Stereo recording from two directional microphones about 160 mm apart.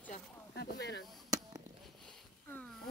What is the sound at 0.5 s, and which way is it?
Speech, 90° left.